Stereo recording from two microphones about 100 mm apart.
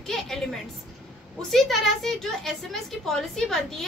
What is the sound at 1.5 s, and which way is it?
A woman's voice, centre (ahead or behind).